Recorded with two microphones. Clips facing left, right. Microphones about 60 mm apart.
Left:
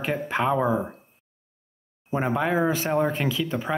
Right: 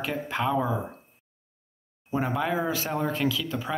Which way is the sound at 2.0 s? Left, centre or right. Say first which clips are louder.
Left 3 dB; left.